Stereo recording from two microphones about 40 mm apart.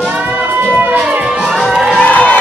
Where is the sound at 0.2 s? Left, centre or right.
Right.